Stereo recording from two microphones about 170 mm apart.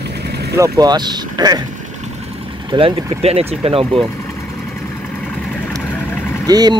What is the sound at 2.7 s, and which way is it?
Speech, 35° right (ahead or behind).